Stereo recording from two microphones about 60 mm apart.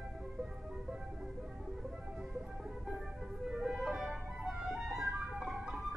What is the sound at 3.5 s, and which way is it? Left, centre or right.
Music, centre.